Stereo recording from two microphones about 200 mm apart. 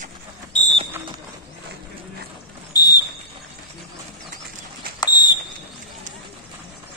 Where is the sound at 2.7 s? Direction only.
20° left (ahead or behind).